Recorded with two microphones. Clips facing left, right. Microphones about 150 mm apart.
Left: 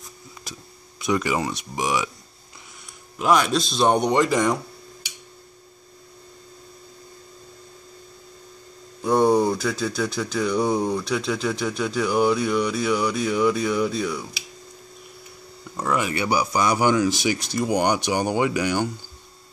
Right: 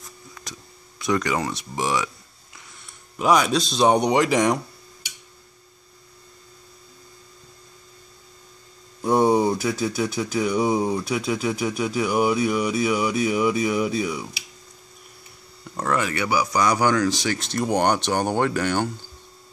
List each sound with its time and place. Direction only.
1.0 s speech: 5° left (ahead or behind)
3.2 s speech: centre (ahead or behind)
9.0 s speech: 10° right (ahead or behind)
16.0 s speech: 20° left (ahead or behind)